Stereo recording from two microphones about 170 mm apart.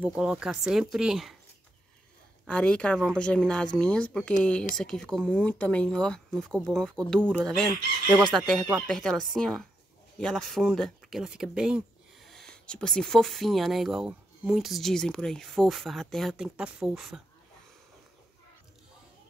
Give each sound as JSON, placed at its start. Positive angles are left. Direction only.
{"t": 0.0, "sound": "speech", "side_deg": -5}
{"t": 2.4, "sound": "speech", "side_deg": 5}